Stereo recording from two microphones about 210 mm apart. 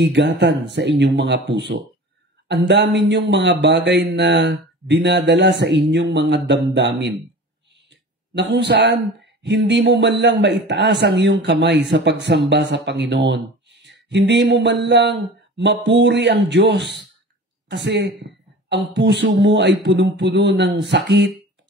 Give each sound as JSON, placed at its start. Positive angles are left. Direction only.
{"t": 0.0, "sound": "a man's voice", "side_deg": -55}
{"t": 2.4, "sound": "a woman's voice", "side_deg": -55}
{"t": 8.4, "sound": "a man's voice", "side_deg": -55}